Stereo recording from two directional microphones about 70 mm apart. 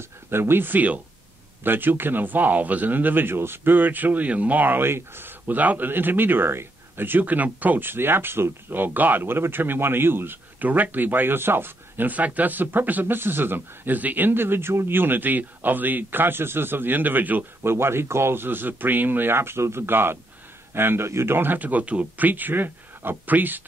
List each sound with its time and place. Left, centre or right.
0.3 s speech: right
17.6 s speech: right